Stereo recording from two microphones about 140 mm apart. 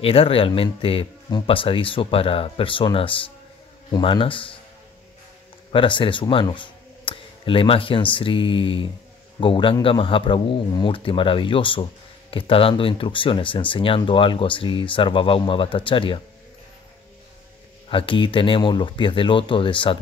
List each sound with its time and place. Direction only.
0.0 s a man's voice: 40° left (ahead or behind)
5.7 s a man's voice: 35° left (ahead or behind)
17.8 s a man's voice: 35° left (ahead or behind)